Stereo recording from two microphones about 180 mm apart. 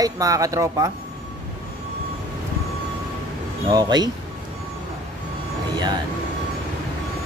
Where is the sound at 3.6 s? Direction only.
20° right (ahead or behind).